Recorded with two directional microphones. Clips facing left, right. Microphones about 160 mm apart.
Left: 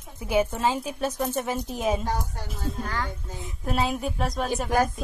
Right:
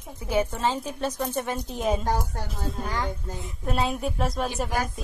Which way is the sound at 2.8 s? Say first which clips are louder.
Right 2 dB; 15° right (ahead or behind).